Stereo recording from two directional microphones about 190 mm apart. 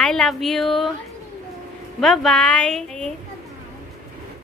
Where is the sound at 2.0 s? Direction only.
Centre (ahead or behind).